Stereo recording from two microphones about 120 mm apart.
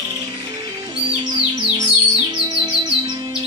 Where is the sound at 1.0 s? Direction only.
50° right (ahead or behind).